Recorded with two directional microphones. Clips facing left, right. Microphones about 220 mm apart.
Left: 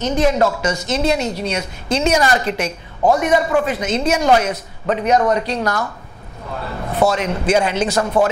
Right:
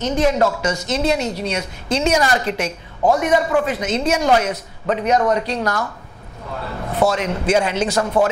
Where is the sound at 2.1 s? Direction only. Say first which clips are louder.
Left 1 dB; 20° left (ahead or behind).